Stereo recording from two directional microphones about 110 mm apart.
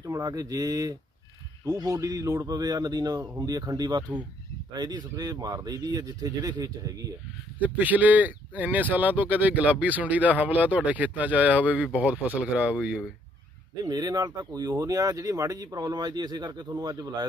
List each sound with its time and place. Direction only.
0.0 s speech: 30° right (ahead or behind)
7.6 s speech: 15° right (ahead or behind)
13.8 s speech: 35° right (ahead or behind)